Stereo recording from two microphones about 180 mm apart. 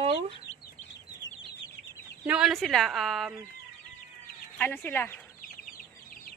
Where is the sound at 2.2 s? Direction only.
5° right (ahead or behind).